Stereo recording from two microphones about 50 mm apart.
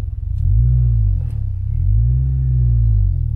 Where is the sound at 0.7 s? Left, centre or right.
Centre.